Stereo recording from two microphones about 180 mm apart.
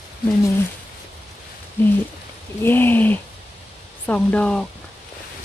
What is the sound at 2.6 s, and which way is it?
Speech, 10° left (ahead or behind).